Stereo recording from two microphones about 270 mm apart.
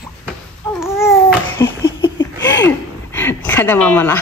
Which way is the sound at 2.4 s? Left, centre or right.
Left.